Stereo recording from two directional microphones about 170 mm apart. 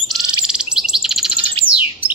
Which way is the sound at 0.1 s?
5° right (ahead or behind).